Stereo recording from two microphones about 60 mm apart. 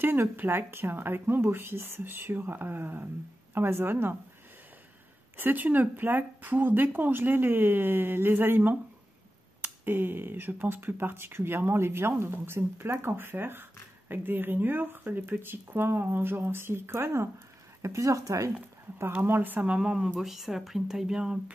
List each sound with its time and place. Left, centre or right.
0.0 s speech: right
5.4 s speech: right
17.8 s speech: right
19.2 s speech: right; by 20.1 s centre
20.2 s speech: centre